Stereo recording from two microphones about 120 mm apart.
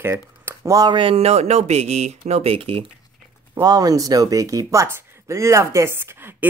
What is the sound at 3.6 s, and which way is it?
Speech, 30° right (ahead or behind).